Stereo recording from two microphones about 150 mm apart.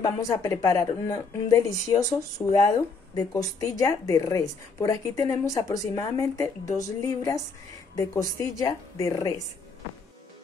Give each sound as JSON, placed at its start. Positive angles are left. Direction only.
{"t": 0.0, "sound": "a woman's voice", "side_deg": 20}